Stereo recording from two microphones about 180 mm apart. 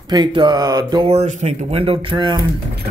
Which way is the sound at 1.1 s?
40° right (ahead or behind).